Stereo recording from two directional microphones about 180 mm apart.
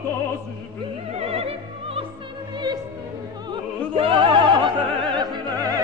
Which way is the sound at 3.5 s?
25° right (ahead or behind).